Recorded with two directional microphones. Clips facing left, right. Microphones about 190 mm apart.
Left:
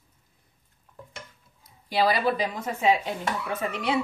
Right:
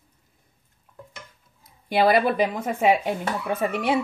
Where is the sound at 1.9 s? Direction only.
55° right (ahead or behind).